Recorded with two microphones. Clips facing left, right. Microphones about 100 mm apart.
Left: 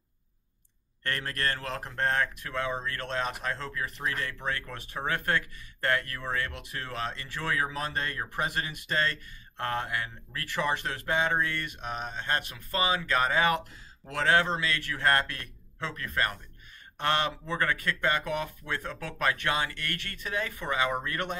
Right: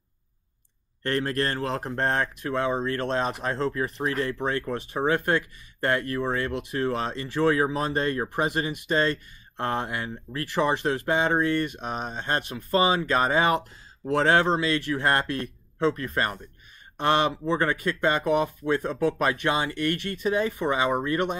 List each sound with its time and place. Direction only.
1.0 s speech: 25° right (ahead or behind)